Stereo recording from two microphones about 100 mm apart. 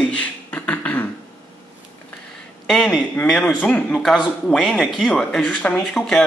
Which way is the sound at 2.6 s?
Centre (ahead or behind).